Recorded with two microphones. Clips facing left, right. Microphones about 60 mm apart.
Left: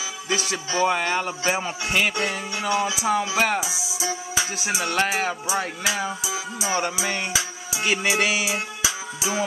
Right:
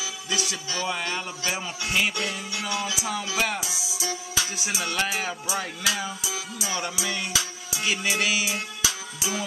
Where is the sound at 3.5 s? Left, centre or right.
Centre.